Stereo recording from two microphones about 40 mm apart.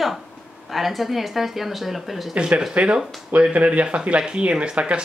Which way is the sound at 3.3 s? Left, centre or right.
Right.